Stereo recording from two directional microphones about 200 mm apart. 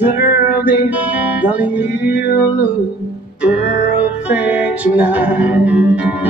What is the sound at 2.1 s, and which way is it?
Music, 55° left (ahead or behind).